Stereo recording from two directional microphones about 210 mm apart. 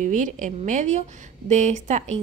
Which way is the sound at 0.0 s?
35° right (ahead or behind).